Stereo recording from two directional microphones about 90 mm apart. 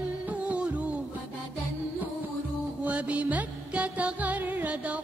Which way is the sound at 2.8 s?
15° right (ahead or behind).